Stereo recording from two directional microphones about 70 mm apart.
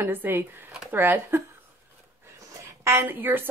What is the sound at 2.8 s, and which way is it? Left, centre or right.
Speech, right.